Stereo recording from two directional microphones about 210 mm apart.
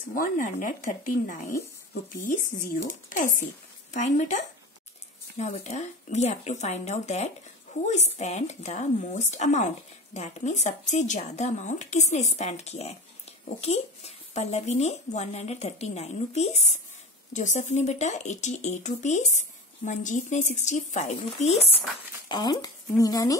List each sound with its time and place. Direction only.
0.0 s speech: 40° left (ahead or behind)
3.1 s speech: 40° left (ahead or behind)
22.3 s speech: 20° left (ahead or behind)